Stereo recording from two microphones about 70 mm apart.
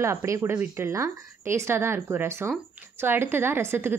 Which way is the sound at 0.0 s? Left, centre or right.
Right.